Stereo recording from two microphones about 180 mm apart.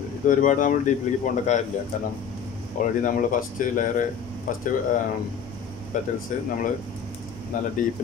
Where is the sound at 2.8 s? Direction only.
45° left (ahead or behind).